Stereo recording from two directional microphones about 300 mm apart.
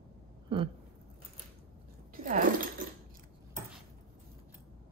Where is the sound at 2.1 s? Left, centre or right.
Right.